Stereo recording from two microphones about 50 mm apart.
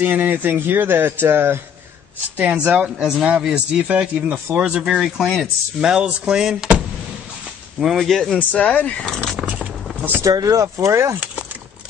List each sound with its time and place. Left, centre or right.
0.0 s speech: right
2.3 s speech: right
4.8 s speech: centre
7.8 s speech: centre
8.1 s speech: centre
8.4 s speech: left
9.4 s a sound: centre
10.2 s speech: right